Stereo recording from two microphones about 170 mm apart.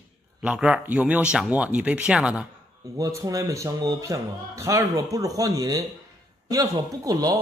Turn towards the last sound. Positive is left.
turn(degrees=-20)  # may be behind; listen again after turning